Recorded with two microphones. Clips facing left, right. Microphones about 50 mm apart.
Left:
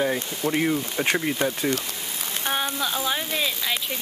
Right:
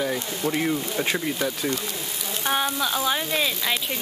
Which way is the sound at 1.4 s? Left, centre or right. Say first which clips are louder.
Left 2 dB; left.